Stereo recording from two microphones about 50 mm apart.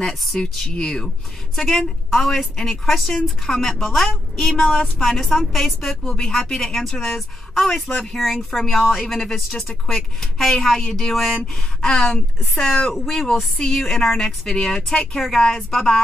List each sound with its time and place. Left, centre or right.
0.4 s a woman's voice: centre
4.6 s speech: centre
4.9 s a woman's voice: centre
6.0 s a woman's voice: centre
7.9 s speech: centre
8.2 s a woman's voice: centre